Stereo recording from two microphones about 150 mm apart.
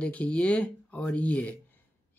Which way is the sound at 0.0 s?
10° left (ahead or behind).